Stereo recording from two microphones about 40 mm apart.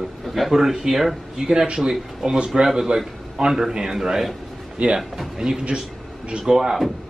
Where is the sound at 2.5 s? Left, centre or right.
Centre.